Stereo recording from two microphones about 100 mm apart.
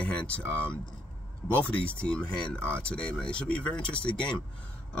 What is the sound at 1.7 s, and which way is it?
Speech, 10° left (ahead or behind).